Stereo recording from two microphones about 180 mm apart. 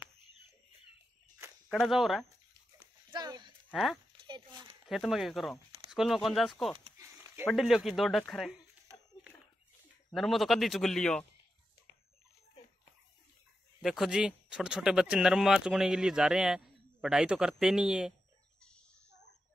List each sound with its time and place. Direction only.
1.7 s speech: centre (ahead or behind)
3.1 s a sound: 25° right (ahead or behind)
3.7 s speech: centre (ahead or behind)
4.3 s a sound: 25° right (ahead or behind)
4.8 s speech: centre (ahead or behind)
10.1 s speech: centre (ahead or behind)
13.7 s speech: centre (ahead or behind)